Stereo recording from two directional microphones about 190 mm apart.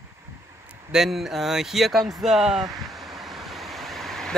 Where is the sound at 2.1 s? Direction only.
Centre (ahead or behind).